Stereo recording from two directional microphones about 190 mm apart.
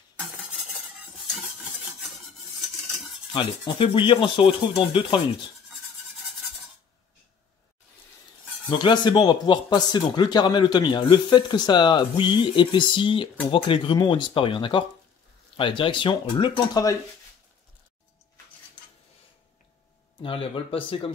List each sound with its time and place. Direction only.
3.3 s speech: 25° left (ahead or behind)
8.6 s speech: 25° left (ahead or behind)
20.2 s speech: 30° left (ahead or behind)